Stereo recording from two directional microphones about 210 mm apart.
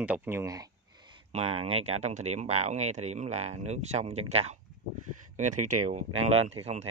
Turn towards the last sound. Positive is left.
turn(degrees=-30)  # may be behind; listen again after turning